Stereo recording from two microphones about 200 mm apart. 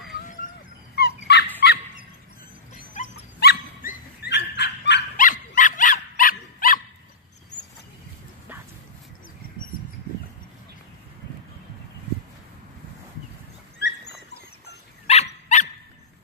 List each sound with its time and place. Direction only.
0.9 s dog: 55° left (ahead or behind)
1.6 s fowl: 60° left (ahead or behind)
3.0 s dog: 35° left (ahead or behind)
3.3 s dog: 50° left (ahead or behind)
4.3 s a sound: 60° left (ahead or behind)
5.1 s dog: 40° left (ahead or behind)
13.7 s dog: 55° left (ahead or behind)
15.0 s dog: 35° left (ahead or behind)